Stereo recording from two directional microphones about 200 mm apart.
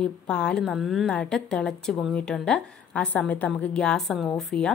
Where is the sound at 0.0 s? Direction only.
5° left (ahead or behind).